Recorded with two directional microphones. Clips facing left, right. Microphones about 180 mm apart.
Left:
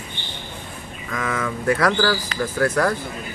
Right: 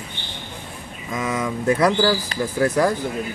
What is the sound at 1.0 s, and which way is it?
Speech, 15° right (ahead or behind).